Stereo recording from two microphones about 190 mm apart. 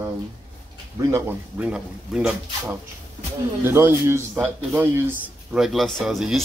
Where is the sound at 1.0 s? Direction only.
15° right (ahead or behind).